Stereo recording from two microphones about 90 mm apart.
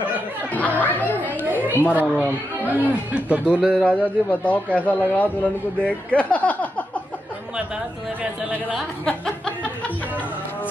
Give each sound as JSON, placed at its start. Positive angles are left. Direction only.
{"t": 0.6, "sound": "chatter", "side_deg": 15}
{"t": 2.6, "sound": "speech", "side_deg": -20}
{"t": 3.8, "sound": "speech", "side_deg": 15}